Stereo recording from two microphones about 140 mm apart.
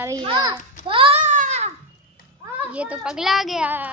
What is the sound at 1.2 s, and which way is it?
Baby cry, 60° right (ahead or behind).